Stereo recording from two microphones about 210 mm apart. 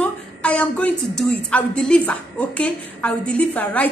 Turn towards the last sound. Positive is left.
turn(degrees=5)  # may be behind; listen again after turning